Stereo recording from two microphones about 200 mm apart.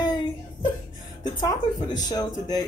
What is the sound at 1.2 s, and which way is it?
Speech, 20° left (ahead or behind).